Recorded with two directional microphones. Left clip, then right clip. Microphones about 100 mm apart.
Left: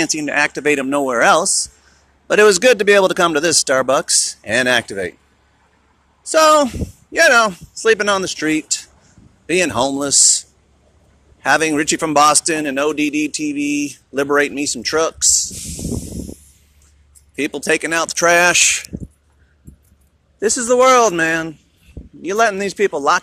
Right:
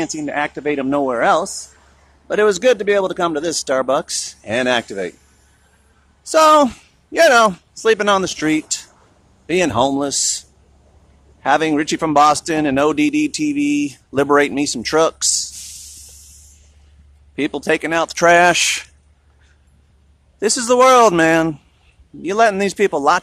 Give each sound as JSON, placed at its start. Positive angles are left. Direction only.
{"t": 0.0, "sound": "speech", "side_deg": 20}
{"t": 1.2, "sound": "speech", "side_deg": 20}
{"t": 6.2, "sound": "speech", "side_deg": -5}
{"t": 9.5, "sound": "speech", "side_deg": 0}
{"t": 12.7, "sound": "speech", "side_deg": -25}
{"t": 17.4, "sound": "speech", "side_deg": -20}
{"t": 17.6, "sound": "speech", "side_deg": -5}
{"t": 18.0, "sound": "speech", "side_deg": -15}
{"t": 20.3, "sound": "speech", "side_deg": 0}
{"t": 21.1, "sound": "speech", "side_deg": -30}
{"t": 22.2, "sound": "speech", "side_deg": -5}
{"t": 22.6, "sound": "speech", "side_deg": -20}